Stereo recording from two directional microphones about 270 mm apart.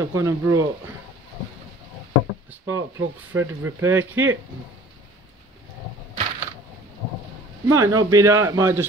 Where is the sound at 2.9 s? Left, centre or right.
Right.